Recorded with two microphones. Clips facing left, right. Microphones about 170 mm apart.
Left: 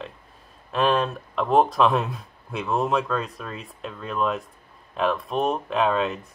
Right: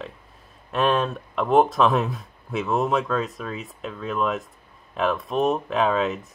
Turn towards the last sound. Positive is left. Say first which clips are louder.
# right 1 dB
turn(degrees=0)  # may be behind; listen again after turning